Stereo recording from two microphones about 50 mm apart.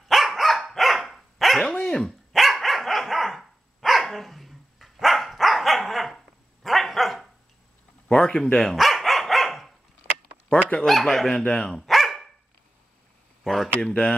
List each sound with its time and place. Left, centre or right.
0.1 s dog: centre
1.8 s speech: centre
2.3 s dog: centre
8.1 s speech: centre
8.7 s dog: centre
10.5 s speech: centre
10.9 s speech: centre
11.9 s dog: centre
13.4 s a sound: centre
13.7 s speech: centre